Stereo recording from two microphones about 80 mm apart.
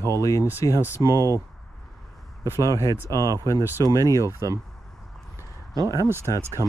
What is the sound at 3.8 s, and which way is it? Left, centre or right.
Speech, right.